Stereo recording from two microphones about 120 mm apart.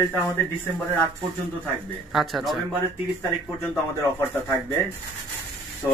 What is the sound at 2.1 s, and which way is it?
Speech, centre (ahead or behind).